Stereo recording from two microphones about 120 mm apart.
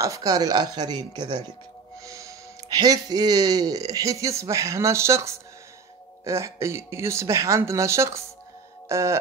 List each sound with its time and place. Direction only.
0.0 s speech: 30° right (ahead or behind)
2.0 s speech: 25° right (ahead or behind)
8.8 s music: 25° right (ahead or behind)